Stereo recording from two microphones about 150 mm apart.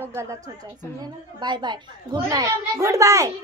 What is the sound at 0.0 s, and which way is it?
A woman's voice, 15° right (ahead or behind).